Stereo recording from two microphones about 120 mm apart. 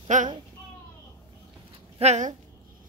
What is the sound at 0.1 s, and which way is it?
Speech, 90° right.